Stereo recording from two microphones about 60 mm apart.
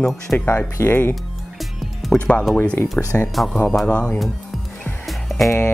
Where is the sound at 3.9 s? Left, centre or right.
Left.